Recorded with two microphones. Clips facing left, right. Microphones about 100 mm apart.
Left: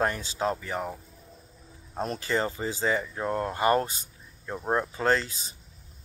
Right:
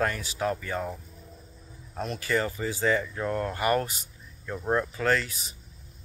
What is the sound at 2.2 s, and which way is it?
Speech, 25° left (ahead or behind).